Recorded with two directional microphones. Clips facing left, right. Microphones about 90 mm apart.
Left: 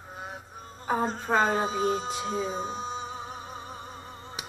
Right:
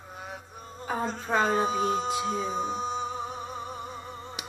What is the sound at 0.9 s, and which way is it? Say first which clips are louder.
Speech: left 2 dB; 30° left (ahead or behind).